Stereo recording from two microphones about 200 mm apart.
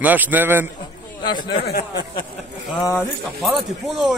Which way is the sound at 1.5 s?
55° left (ahead or behind).